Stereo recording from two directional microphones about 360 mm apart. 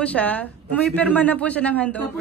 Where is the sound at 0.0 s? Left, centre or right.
Centre.